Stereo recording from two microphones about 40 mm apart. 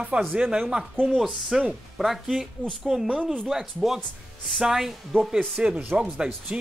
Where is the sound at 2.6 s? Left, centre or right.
Left.